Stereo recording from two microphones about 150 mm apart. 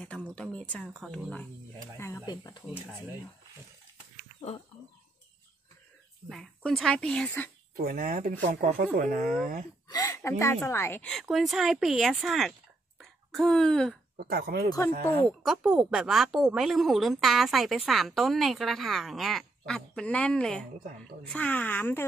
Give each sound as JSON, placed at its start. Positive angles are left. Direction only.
{"t": 0.0, "sound": "speech", "side_deg": 5}
{"t": 2.0, "sound": "speech", "side_deg": 15}
{"t": 2.2, "sound": "speech", "side_deg": 30}
{"t": 4.4, "sound": "speech", "side_deg": 45}
{"t": 6.2, "sound": "a woman's voice", "side_deg": 0}
{"t": 7.7, "sound": "speech", "side_deg": -70}
{"t": 9.8, "sound": "a woman's voice", "side_deg": 25}
{"t": 11.1, "sound": "a woman's voice", "side_deg": 0}
{"t": 14.1, "sound": "speech", "side_deg": -90}
{"t": 15.0, "sound": "speech", "side_deg": 10}
{"t": 15.4, "sound": "a woman's voice", "side_deg": -5}